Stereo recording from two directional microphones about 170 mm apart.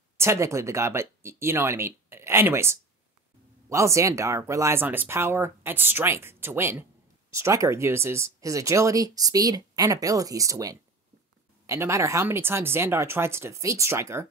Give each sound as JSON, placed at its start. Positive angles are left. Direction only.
{"t": 0.2, "sound": "speech", "side_deg": -15}